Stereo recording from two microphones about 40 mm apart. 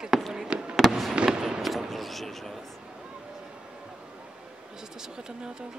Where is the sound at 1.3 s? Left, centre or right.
Right.